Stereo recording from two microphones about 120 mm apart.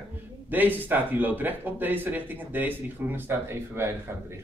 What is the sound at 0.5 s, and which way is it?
Speech, 15° right (ahead or behind).